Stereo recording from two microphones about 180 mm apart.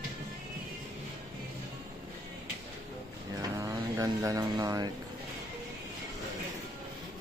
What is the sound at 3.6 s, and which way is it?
Speech, 20° right (ahead or behind).